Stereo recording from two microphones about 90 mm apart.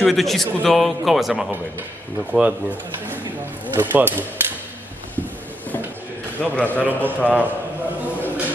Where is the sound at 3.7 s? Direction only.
20° right (ahead or behind).